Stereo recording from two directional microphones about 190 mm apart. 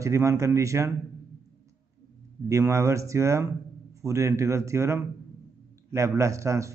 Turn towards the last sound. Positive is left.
turn(degrees=-15)  # may be behind; listen again after turning